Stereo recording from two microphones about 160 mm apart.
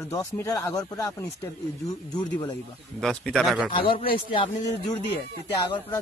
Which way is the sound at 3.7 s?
35° left (ahead or behind).